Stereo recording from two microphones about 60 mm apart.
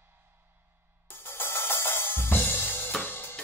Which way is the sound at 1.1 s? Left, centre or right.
Left.